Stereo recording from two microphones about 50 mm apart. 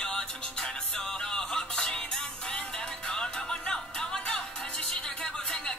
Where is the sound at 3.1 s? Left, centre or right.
Centre.